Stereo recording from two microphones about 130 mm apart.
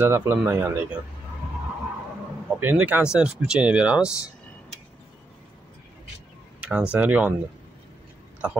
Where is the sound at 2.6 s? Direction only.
15° right (ahead or behind).